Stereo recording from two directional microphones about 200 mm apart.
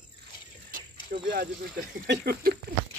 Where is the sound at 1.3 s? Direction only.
50° right (ahead or behind).